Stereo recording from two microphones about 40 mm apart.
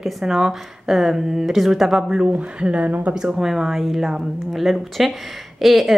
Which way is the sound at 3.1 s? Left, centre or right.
Centre.